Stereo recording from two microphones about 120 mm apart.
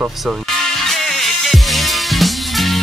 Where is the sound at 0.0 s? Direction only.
5° right (ahead or behind).